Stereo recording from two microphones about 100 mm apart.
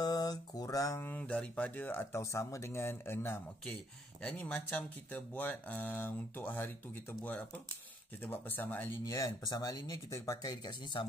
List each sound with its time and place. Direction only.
0.0 s a sound: 40° left (ahead or behind)
1.0 s speech: 15° left (ahead or behind)
4.2 s speech: 10° left (ahead or behind)
9.0 s speech: 35° left (ahead or behind)